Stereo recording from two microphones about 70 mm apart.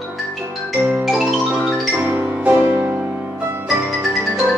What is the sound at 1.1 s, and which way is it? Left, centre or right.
Music, centre.